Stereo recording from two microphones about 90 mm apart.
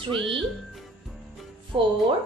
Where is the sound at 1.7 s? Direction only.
70° right (ahead or behind).